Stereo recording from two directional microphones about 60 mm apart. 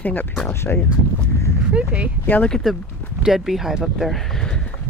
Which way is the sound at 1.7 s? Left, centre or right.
Right.